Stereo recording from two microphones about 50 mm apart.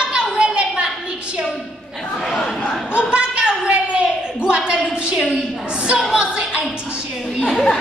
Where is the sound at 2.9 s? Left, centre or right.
Centre.